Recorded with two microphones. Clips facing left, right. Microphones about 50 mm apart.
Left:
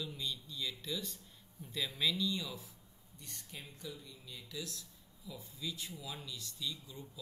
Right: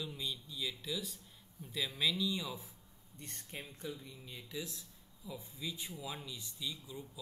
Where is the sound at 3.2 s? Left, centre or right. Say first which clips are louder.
Right 3 dB; right.